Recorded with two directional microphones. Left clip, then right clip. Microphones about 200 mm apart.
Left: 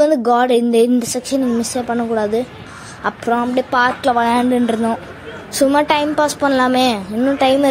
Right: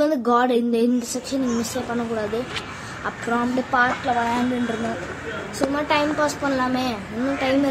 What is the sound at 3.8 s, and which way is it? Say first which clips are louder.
Speech: left 5 dB; 55° left (ahead or behind).